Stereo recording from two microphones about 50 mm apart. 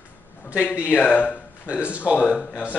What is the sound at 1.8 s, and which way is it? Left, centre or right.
Speech, right.